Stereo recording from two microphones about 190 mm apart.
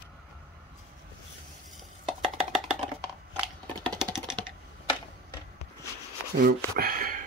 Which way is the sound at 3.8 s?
5° left (ahead or behind).